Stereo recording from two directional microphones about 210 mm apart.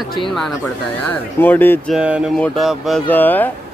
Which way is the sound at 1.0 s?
10° left (ahead or behind).